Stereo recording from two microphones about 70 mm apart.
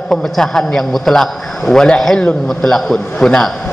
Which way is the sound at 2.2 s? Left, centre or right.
Centre.